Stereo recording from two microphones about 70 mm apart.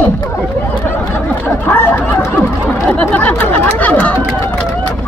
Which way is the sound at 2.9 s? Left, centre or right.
Left.